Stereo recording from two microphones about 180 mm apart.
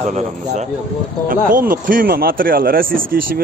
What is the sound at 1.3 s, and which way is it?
A man's voice, 50° right (ahead or behind).